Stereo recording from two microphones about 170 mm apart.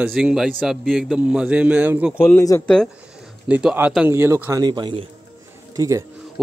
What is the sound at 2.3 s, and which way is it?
Speech, 15° left (ahead or behind).